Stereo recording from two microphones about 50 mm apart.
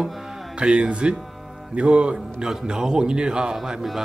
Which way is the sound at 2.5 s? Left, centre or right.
Centre.